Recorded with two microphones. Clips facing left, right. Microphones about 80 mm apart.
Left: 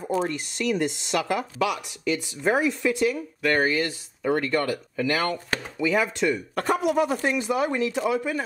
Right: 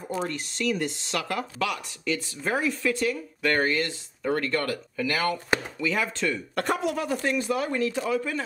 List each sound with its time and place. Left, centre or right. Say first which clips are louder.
0.3 s speech: left 2 dB; centre
6.5 s speech: left 2 dB; centre
6.8 s speech: left 4 dB; centre